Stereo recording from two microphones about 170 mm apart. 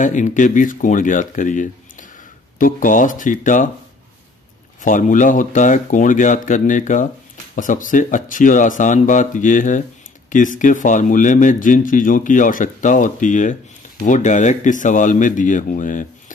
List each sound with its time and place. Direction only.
0.0 s speech: 45° left (ahead or behind)
4.8 s speech: 50° left (ahead or behind)